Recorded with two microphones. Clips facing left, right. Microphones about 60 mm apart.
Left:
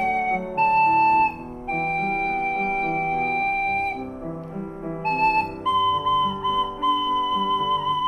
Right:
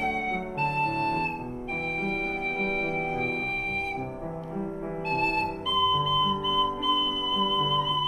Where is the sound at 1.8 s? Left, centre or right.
Left.